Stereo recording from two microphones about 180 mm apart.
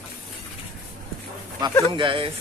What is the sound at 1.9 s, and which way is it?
Speech, 30° right (ahead or behind).